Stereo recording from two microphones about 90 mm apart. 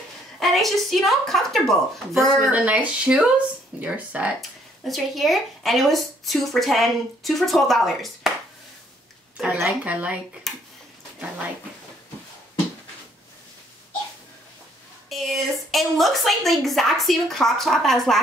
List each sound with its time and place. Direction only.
0.4 s speech: centre (ahead or behind)
2.5 s speech: 15° right (ahead or behind)
4.4 s speech: centre (ahead or behind)
9.7 s speech: 15° right (ahead or behind)
10.5 s a sound: centre (ahead or behind)
15.0 s speech: centre (ahead or behind)